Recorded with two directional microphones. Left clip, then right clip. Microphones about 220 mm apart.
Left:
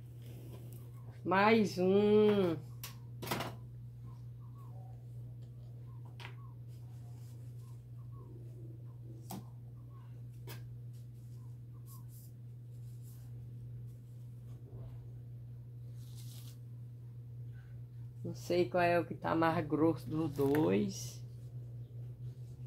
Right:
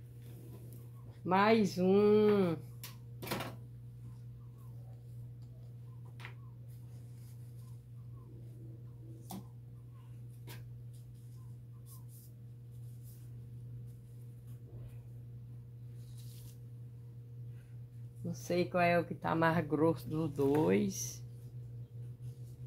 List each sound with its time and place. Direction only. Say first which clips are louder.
1.2 s speech: even; 20° right (ahead or behind)
18.2 s speech: left 2 dB; 25° right (ahead or behind)